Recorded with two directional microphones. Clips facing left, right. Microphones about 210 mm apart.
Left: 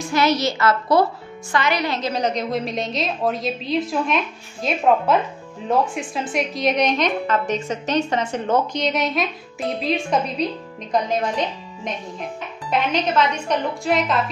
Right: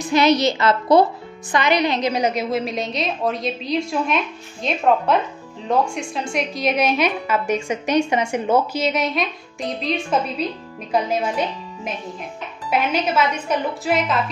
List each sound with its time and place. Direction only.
0.0 s a woman's voice: 20° right (ahead or behind); by 9.9 s 5° left (ahead or behind)
10.9 s a woman's voice: 5° right (ahead or behind)